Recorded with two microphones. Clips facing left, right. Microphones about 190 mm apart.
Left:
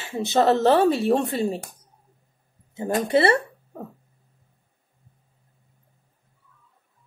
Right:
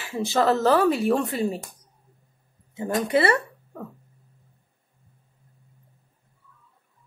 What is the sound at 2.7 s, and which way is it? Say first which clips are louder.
Speech: left 2 dB; 30° left (ahead or behind).